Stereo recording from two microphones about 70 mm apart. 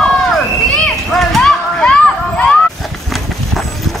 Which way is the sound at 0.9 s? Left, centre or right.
Centre.